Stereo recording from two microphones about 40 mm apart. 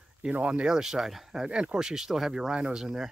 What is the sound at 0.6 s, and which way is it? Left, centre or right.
Speech, centre.